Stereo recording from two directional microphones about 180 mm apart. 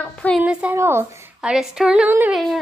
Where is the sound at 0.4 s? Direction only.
10° right (ahead or behind).